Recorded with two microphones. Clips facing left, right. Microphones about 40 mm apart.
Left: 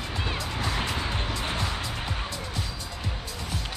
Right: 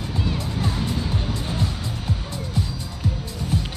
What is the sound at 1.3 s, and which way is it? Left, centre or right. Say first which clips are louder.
Music: right 2 dB; left.